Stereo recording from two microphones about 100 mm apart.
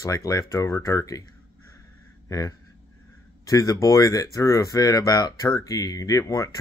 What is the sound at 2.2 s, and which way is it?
Speech, 35° left (ahead or behind).